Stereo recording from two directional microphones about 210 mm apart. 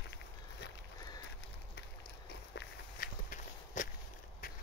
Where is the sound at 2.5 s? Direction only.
45° left (ahead or behind).